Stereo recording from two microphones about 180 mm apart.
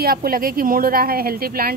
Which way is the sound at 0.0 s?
55° right (ahead or behind).